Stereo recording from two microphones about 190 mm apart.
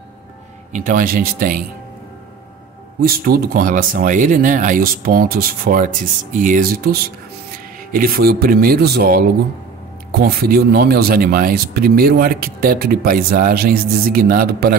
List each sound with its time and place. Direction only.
0.7 s speech: 45° right (ahead or behind)
3.0 s speech: 50° right (ahead or behind)